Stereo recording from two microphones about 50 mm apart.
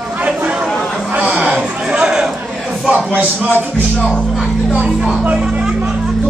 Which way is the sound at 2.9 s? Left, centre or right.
Right.